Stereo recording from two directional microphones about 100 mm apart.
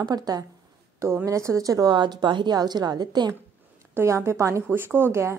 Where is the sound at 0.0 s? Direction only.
40° right (ahead or behind).